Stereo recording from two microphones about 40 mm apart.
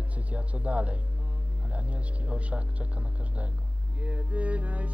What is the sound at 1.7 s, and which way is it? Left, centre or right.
Music, right.